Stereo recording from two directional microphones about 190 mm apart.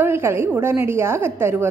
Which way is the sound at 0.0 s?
15° right (ahead or behind).